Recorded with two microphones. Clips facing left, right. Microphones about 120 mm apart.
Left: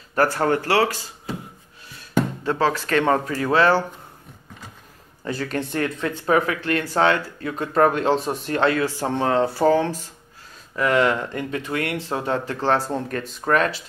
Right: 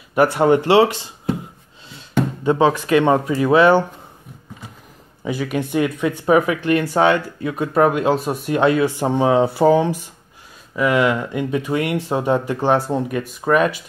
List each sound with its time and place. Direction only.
0.1 s speech: 15° right (ahead or behind)
2.4 s speech: 15° right (ahead or behind)
5.2 s speech: 10° right (ahead or behind)